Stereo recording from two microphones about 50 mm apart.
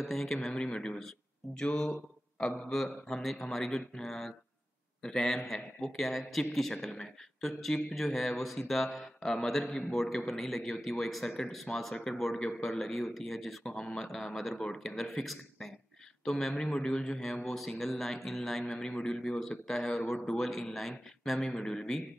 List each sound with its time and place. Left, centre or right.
0.0 s a man's voice: centre
1.7 s speech: left
2.7 s a man's voice: centre